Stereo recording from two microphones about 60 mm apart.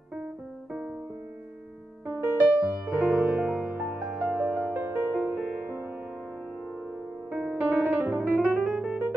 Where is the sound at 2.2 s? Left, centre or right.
Right.